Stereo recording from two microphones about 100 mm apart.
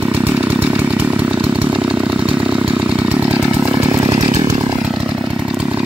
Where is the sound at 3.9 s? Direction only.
35° right (ahead or behind).